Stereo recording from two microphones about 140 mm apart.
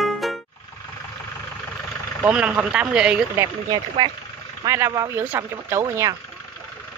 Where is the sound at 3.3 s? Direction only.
25° right (ahead or behind).